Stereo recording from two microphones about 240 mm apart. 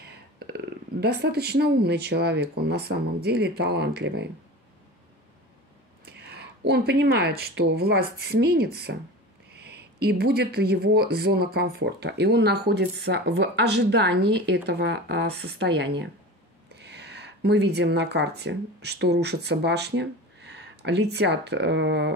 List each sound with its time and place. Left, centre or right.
0.0 s a sound: right
1.0 s speech: right
6.0 s speech: right